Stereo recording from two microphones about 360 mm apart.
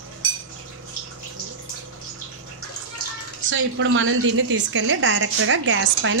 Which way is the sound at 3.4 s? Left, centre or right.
Right.